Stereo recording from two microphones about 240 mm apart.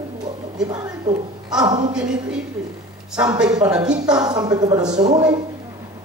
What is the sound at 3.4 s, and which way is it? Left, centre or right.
Speech, centre.